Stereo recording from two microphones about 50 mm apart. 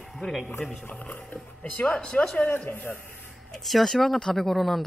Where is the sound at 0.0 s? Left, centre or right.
Centre.